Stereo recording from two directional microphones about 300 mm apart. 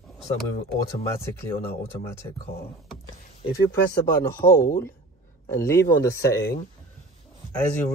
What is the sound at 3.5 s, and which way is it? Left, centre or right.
Speech, centre.